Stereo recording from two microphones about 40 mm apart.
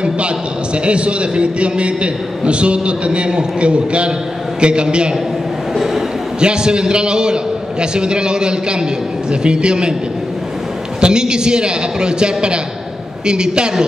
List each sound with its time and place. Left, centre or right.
0.8 s a man's voice: right
6.4 s a man's voice: right
11.0 s a man's voice: right